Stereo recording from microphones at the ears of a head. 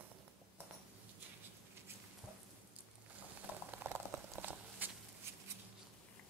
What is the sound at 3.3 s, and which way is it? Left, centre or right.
Boiling, right.